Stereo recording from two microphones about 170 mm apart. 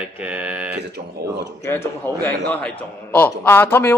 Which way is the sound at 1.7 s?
15° left (ahead or behind).